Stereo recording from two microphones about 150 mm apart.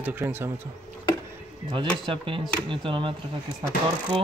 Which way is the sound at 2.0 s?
35° right (ahead or behind).